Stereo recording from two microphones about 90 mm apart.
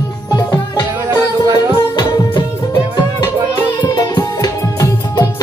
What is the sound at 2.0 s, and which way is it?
Music, 50° left (ahead or behind).